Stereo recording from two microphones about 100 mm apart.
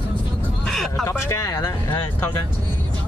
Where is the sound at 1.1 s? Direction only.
30° left (ahead or behind).